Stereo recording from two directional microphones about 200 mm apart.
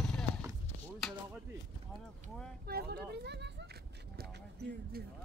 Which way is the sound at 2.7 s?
50° right (ahead or behind).